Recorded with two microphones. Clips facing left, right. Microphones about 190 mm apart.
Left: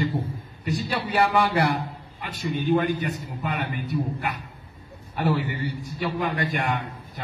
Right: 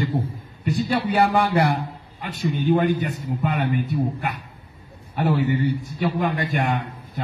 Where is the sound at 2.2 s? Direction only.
50° right (ahead or behind).